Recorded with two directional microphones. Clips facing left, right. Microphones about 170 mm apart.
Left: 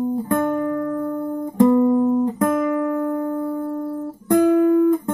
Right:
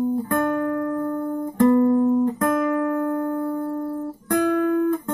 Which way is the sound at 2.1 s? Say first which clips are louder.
Even; 20° left (ahead or behind).